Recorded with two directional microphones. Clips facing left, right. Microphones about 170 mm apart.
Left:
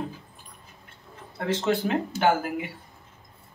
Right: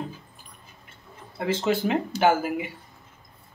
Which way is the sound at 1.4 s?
5° right (ahead or behind).